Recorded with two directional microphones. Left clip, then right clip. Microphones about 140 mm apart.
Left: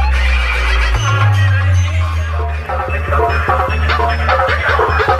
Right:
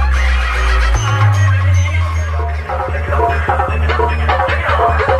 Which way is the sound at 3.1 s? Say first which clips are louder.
Left 1 dB; 65° left (ahead or behind).